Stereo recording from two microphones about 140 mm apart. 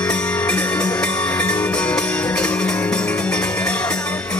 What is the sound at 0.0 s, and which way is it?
Music, 10° left (ahead or behind).